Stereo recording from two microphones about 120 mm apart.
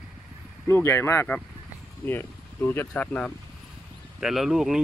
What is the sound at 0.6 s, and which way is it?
Speech, 20° left (ahead or behind).